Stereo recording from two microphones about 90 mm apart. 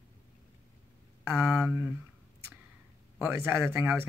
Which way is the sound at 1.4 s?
10° right (ahead or behind).